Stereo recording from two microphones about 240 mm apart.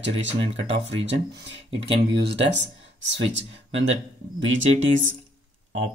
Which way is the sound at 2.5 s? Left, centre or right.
Right.